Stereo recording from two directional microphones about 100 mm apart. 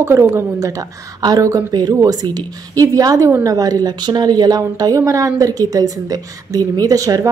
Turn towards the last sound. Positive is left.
turn(degrees=-35)  # may be behind; listen again after turning